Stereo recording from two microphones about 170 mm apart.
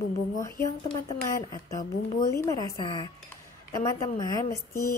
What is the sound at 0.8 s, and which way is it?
Speech, 35° left (ahead or behind).